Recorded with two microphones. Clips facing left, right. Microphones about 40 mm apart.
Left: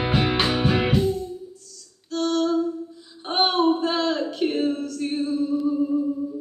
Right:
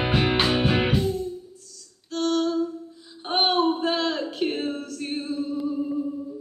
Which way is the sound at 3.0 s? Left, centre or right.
Centre.